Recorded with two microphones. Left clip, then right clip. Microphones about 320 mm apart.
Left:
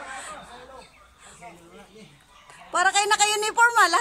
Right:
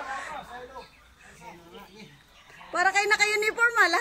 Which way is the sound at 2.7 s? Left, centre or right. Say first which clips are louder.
Left 2 dB; centre.